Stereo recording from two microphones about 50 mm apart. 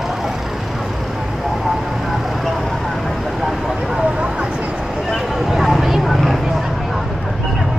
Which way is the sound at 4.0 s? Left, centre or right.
Right.